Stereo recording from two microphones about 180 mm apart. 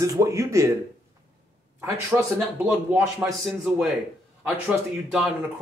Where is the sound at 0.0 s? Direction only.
15° right (ahead or behind).